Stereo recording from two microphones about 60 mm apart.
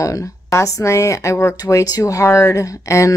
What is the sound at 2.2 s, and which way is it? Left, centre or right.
Speech, left.